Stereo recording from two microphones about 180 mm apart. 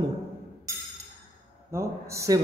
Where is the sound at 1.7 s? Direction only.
15° right (ahead or behind).